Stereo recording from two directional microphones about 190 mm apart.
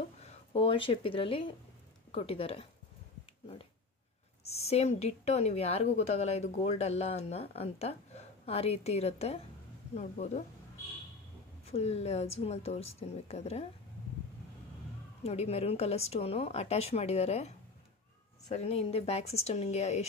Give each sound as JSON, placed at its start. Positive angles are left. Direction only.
{"t": 0.2, "sound": "a woman's voice", "side_deg": 30}
{"t": 4.5, "sound": "a woman's voice", "side_deg": 35}
{"t": 11.7, "sound": "a woman's voice", "side_deg": 35}
{"t": 15.2, "sound": "a woman's voice", "side_deg": 35}